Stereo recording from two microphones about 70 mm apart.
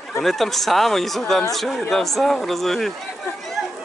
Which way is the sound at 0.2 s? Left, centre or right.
Centre.